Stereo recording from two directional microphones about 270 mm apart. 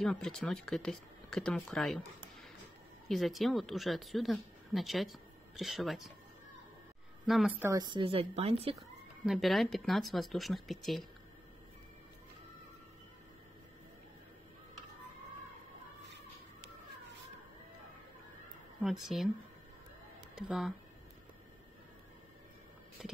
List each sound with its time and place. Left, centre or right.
0.0 s speech: centre
3.1 s speech: centre
7.2 s a woman's voice: centre; by 8.7 s right
8.7 s speech: centre
18.8 s speech: centre
20.3 s speech: centre